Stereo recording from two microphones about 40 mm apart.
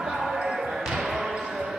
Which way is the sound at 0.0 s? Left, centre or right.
Centre.